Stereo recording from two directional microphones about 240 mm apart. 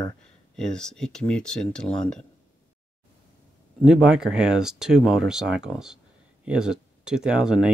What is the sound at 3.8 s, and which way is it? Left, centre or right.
Speech, centre.